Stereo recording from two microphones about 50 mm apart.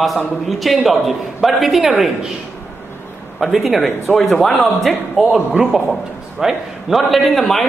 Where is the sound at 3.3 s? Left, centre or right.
Centre.